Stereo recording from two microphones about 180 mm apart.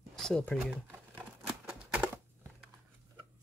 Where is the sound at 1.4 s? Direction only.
5° right (ahead or behind).